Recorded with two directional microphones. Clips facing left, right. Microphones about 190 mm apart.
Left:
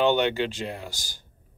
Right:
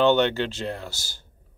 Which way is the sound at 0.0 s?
10° left (ahead or behind).